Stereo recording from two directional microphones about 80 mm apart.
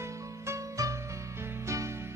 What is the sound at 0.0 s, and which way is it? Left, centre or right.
Music, right.